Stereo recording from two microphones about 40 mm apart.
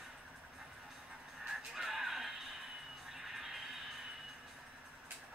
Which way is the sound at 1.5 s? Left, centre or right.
Centre.